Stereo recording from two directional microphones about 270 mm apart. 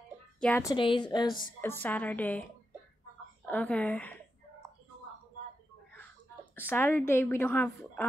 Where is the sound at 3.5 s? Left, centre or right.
Centre.